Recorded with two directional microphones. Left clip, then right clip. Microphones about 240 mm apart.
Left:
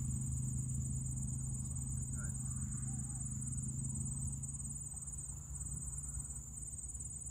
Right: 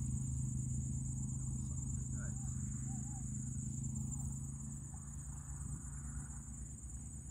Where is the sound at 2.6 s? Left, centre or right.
Left.